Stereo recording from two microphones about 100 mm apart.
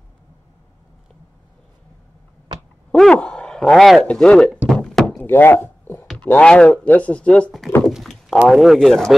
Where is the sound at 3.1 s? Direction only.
10° left (ahead or behind).